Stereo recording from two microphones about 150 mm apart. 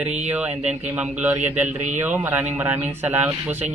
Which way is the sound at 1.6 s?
55° right (ahead or behind).